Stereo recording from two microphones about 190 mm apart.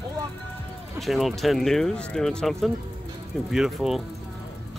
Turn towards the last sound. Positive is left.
turn(degrees=0)  # may be behind; listen again after turning